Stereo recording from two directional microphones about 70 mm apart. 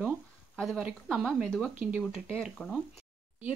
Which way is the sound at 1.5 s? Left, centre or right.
Centre.